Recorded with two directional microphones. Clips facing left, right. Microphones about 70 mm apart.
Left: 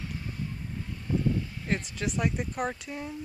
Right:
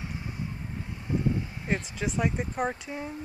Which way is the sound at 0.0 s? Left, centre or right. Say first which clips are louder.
Right 1 dB; centre.